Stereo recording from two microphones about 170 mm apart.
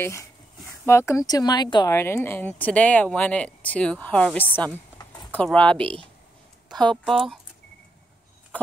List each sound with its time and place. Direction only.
0.0 s speech: 15° left (ahead or behind)
4.9 s a sound: 25° left (ahead or behind)
5.3 s speech: 5° left (ahead or behind)